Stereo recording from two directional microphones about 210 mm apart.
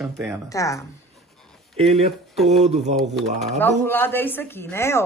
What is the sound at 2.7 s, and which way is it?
Speech, 30° right (ahead or behind).